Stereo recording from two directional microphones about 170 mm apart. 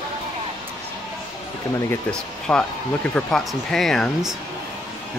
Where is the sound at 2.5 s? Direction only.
5° left (ahead or behind).